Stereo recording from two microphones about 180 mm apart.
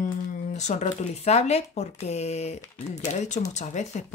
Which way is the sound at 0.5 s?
40° left (ahead or behind).